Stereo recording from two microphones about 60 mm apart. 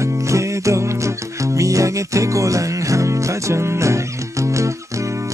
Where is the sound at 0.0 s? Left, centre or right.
Right.